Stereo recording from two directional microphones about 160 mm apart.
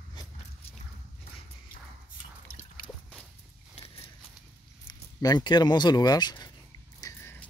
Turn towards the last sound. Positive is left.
turn(degrees=25)  # may be behind; listen again after turning